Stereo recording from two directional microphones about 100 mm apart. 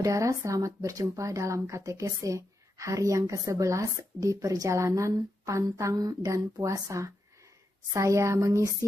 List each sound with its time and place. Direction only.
0.0 s speech: 35° right (ahead or behind)